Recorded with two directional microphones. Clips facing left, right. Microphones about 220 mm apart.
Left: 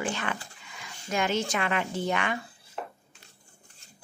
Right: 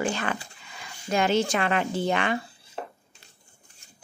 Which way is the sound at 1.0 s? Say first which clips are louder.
Right 5 dB; 30° right (ahead or behind).